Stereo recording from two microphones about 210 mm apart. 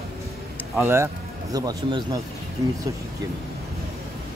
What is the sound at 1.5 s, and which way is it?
Speech, 20° right (ahead or behind).